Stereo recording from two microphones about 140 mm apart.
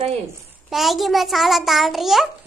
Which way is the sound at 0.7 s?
Centre (ahead or behind).